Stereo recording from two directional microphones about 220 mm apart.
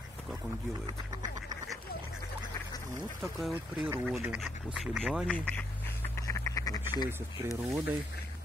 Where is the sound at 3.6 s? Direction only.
10° right (ahead or behind).